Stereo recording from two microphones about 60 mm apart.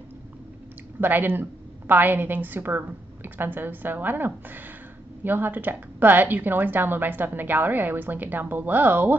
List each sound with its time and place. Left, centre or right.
1.0 s speech: right